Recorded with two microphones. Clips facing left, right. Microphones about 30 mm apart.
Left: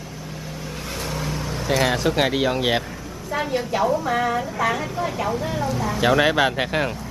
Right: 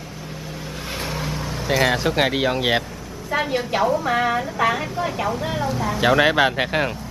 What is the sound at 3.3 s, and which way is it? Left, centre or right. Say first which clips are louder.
Speech: right 2 dB; right.